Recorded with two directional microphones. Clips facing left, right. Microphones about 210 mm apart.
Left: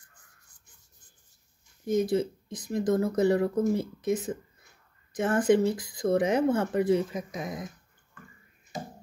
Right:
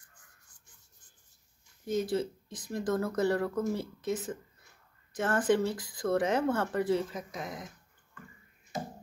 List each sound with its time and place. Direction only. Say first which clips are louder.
1.9 s speech: left 5 dB; 15° left (ahead or behind)